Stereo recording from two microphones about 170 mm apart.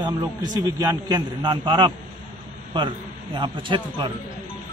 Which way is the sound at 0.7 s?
25° right (ahead or behind).